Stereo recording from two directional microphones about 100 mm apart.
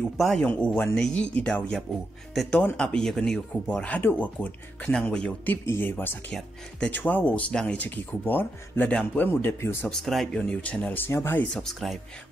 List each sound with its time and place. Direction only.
0.4 s speech: 10° left (ahead or behind)
2.8 s speech: 5° left (ahead or behind); by 9.8 s 25° left (ahead or behind)
9.8 s speech: 5° left (ahead or behind); by 11.4 s 20° left (ahead or behind)
11.5 s speech: centre (ahead or behind)